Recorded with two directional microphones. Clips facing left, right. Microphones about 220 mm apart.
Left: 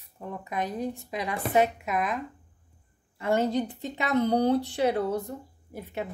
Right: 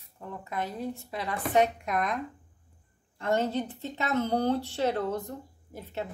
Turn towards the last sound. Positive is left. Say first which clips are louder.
# left 2 dB
turn(degrees=15)  # may be behind; listen again after turning